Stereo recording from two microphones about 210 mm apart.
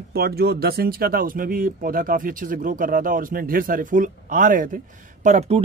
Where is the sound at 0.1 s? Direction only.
50° right (ahead or behind).